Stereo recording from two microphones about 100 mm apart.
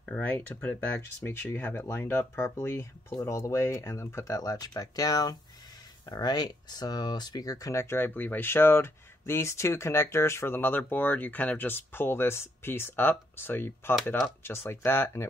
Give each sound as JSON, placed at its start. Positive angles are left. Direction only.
{"t": 0.0, "sound": "speech", "side_deg": 15}